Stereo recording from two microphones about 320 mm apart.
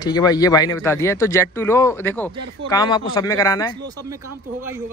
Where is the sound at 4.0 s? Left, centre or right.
Centre.